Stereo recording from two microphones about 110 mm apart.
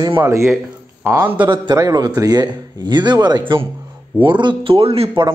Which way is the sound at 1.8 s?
35° right (ahead or behind).